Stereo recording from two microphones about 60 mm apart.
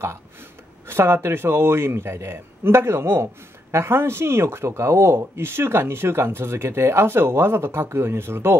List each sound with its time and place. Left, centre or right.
0.0 s speech: right